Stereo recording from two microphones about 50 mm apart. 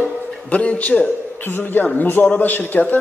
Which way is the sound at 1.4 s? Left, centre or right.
Left.